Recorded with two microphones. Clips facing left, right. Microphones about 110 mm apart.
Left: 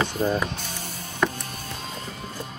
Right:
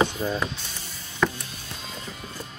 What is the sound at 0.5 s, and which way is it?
Music, 50° left (ahead or behind).